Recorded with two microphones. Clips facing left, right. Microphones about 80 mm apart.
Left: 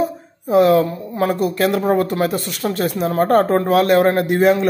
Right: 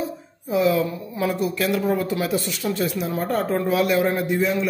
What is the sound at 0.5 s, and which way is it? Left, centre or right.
A woman's voice, left.